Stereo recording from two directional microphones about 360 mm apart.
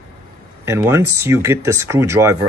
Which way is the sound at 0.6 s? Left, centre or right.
Centre.